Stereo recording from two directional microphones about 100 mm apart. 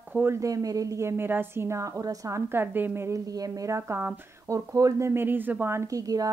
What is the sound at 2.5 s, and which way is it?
A woman's voice, 20° right (ahead or behind).